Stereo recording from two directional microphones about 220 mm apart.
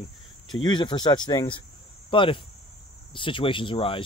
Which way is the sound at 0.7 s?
20° left (ahead or behind).